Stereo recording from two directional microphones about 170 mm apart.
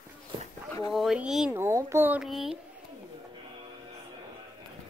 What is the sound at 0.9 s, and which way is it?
Speech, centre (ahead or behind).